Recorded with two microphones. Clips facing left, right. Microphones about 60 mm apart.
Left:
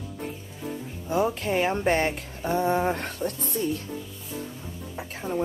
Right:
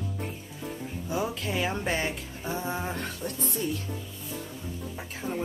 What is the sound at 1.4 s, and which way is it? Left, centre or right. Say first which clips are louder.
Speech: left 5 dB; left.